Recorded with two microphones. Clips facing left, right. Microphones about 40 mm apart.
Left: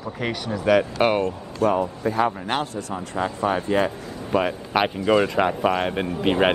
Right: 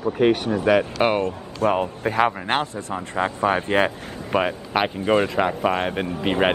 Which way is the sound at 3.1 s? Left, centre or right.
Right.